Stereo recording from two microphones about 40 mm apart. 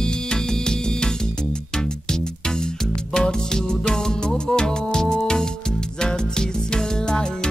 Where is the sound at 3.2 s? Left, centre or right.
Centre.